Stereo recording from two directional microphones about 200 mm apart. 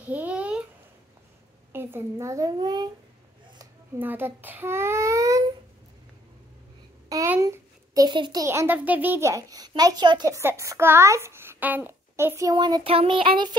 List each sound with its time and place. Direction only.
0.0 s babbling: 5° right (ahead or behind)
1.7 s a child's voice: 10° right (ahead or behind)
7.1 s a child's voice: 15° right (ahead or behind)